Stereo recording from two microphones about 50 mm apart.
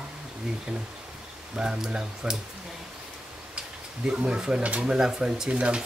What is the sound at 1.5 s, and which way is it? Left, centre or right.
Speech, centre.